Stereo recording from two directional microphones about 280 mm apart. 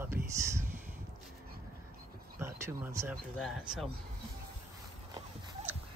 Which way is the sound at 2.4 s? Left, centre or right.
Centre.